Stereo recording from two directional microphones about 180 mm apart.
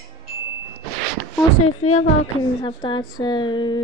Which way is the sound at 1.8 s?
40° left (ahead or behind).